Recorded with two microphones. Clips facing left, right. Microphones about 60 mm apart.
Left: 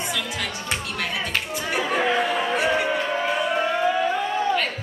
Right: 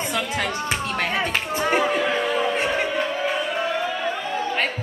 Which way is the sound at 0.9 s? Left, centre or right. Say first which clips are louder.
Right 4 dB; right.